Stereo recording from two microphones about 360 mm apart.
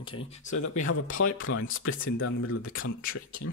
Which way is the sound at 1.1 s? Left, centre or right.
Left.